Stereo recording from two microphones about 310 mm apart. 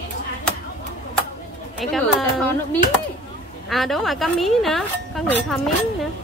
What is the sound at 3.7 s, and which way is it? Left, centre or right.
A woman's voice, centre.